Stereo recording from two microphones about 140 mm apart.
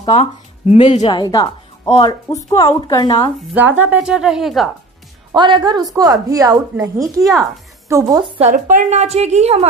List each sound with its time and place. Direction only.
0.0 s speech: 50° left (ahead or behind)
1.0 s speech: 30° left (ahead or behind)
3.5 s a woman's voice: 15° right (ahead or behind)
5.3 s a woman's voice: 35° right (ahead or behind)
8.2 s a woman's voice: 50° right (ahead or behind)
8.6 s a woman's voice: 60° right (ahead or behind)